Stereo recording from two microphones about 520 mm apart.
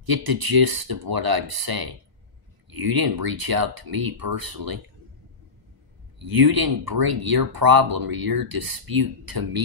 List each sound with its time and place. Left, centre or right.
0.0 s speech: right
6.1 s speech: right